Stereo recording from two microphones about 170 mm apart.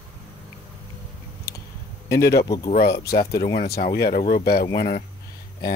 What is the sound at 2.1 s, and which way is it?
Speech, 70° left (ahead or behind).